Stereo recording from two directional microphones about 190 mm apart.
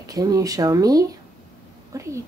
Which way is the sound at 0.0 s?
20° right (ahead or behind).